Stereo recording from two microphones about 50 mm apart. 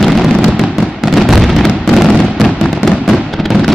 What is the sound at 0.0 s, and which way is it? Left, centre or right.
Fireworks, centre.